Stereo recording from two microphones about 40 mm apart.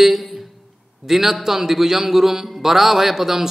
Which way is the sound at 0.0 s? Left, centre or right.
Centre.